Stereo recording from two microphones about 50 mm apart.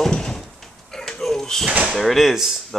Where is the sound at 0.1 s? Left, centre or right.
Centre.